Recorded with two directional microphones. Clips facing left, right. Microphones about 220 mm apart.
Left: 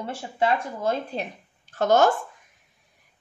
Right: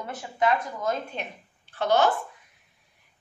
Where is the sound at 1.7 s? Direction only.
45° left (ahead or behind).